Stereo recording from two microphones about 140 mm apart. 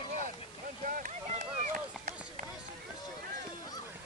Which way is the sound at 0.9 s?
70° right (ahead or behind).